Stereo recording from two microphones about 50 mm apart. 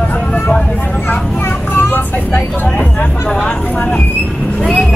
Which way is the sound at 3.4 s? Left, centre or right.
Left.